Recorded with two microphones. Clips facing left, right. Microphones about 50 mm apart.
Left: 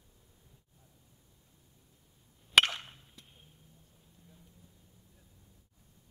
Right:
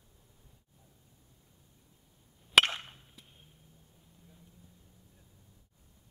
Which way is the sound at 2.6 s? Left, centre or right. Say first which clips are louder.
Even; right.